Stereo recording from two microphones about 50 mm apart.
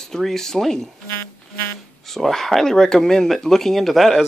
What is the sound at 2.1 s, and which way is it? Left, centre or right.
Speech, centre.